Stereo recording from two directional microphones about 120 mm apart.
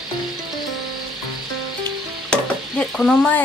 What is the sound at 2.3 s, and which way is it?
Stir, 5° left (ahead or behind).